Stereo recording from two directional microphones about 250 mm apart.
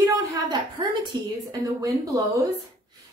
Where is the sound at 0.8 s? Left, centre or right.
Centre.